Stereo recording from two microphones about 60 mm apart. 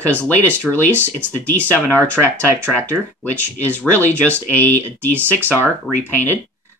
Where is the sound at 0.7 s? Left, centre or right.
Centre.